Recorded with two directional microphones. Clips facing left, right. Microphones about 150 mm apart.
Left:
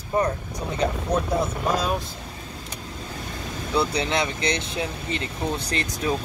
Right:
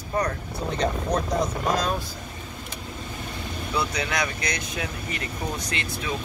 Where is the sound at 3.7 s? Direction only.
30° left (ahead or behind).